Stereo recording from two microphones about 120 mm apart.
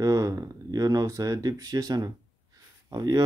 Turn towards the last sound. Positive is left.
turn(degrees=-35)  # may be behind; listen again after turning